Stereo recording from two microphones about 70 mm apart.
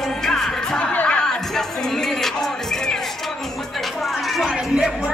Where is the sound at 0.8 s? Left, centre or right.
Centre.